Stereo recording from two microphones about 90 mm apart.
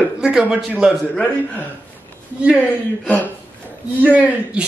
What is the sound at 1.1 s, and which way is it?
Speech, 20° left (ahead or behind).